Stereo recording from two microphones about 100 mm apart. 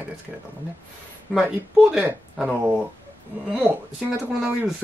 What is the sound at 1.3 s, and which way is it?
Speech, 5° right (ahead or behind).